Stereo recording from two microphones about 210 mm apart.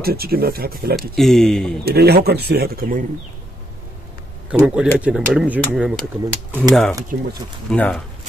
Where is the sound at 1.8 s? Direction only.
50° right (ahead or behind).